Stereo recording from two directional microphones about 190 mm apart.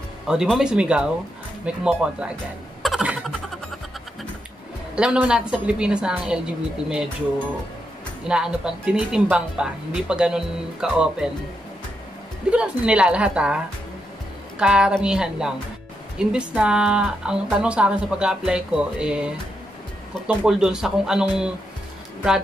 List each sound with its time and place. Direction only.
0.3 s speech: centre (ahead or behind)
2.8 s a sound: 5° right (ahead or behind)
4.9 s speech: 5° right (ahead or behind)
8.2 s speech: 5° right (ahead or behind)
12.4 s speech: 5° right (ahead or behind)
14.6 s speech: 5° right (ahead or behind)